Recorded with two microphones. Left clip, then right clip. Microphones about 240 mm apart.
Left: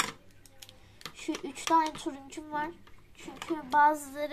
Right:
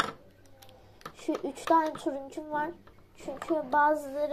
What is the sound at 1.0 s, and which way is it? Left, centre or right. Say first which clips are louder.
Speech: right 4 dB; left.